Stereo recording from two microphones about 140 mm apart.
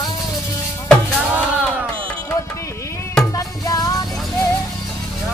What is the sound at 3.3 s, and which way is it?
Music, 25° left (ahead or behind).